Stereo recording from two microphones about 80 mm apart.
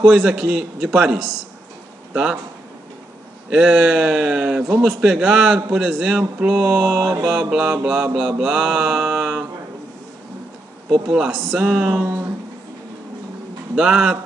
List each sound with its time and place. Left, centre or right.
0.0 s a man's voice: centre
3.4 s a man's voice: centre
10.9 s a man's voice: centre
12.0 s a sound: right
13.7 s a man's voice: centre